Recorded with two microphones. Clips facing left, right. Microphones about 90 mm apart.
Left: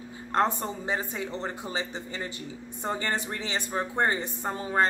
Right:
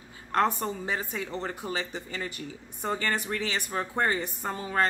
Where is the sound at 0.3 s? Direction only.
25° left (ahead or behind).